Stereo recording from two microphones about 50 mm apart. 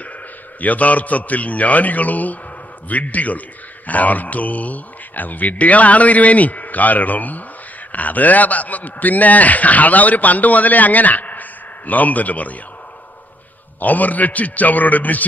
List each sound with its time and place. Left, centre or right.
0.6 s a man's voice: left
13.7 s a man's voice: left